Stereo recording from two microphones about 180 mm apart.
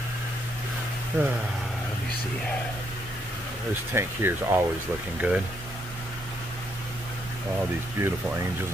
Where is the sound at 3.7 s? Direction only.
15° right (ahead or behind).